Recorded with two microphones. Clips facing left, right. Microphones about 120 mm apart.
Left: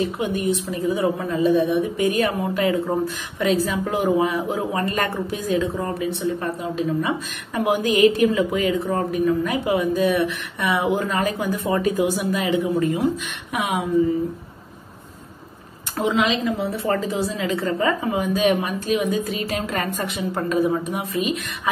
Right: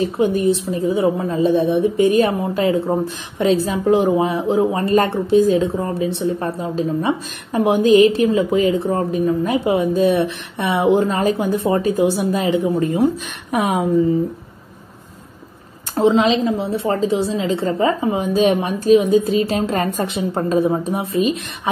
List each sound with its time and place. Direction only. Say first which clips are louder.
0.0 s a woman's voice: right 6 dB; 35° right (ahead or behind)
15.9 s a woman's voice: right 6 dB; 30° right (ahead or behind)